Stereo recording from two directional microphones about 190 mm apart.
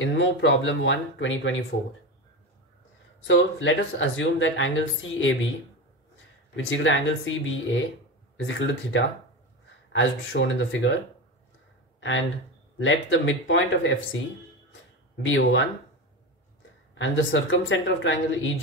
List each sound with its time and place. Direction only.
0.0 s speech: 75° left (ahead or behind)
3.3 s speech: 75° left (ahead or behind)
4.2 s speech: 90° left
6.5 s speech: 85° left
9.9 s speech: 75° left (ahead or behind)
12.7 s speech: 90° left
15.2 s speech: 80° left
17.0 s speech: 85° left